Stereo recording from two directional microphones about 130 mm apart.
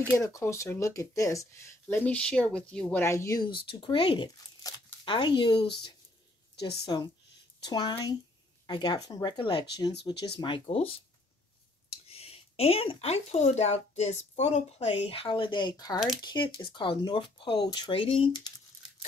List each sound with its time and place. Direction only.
0.2 s speech: 25° left (ahead or behind); by 3.0 s 5° left (ahead or behind)
3.0 s speech: 20° left (ahead or behind)
18.0 s speech: 45° left (ahead or behind)